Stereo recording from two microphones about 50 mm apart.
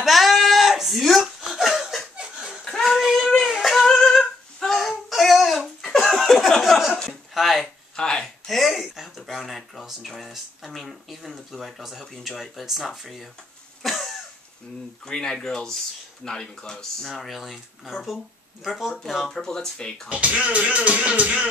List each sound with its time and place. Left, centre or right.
0.0 s a sound: centre
2.1 s laughter: centre
2.8 s child singing: centre
3.3 s a sound: centre
3.8 s singing: centre
4.7 s a sound: centre
7.9 s a sound: centre
8.5 s speech: centre
13.8 s cough: centre
15.0 s speech: centre
17.1 s speech: centre
19.3 s speech: centre
20.1 s speech: right